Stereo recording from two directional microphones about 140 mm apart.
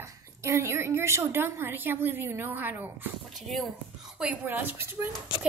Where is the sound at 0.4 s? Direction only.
20° right (ahead or behind).